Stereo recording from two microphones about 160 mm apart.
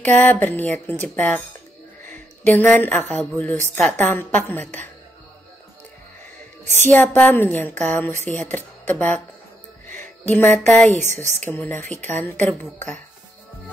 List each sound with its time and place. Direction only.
0.0 s a woman's voice: 10° left (ahead or behind)
6.9 s a woman's voice: 10° left (ahead or behind)
9.8 s music: 50° right (ahead or behind)
10.3 s a woman's voice: 10° left (ahead or behind)